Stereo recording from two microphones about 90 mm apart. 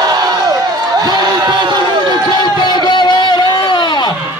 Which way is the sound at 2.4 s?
55° left (ahead or behind).